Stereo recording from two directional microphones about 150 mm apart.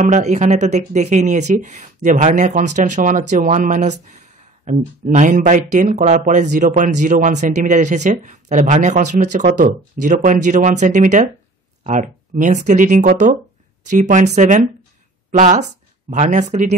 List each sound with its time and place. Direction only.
0.0 s speech: 50° right (ahead or behind)